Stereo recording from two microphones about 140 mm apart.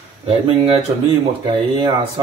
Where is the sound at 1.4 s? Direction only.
35° right (ahead or behind).